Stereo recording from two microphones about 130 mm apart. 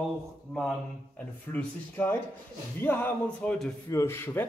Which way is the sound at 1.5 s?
15° left (ahead or behind).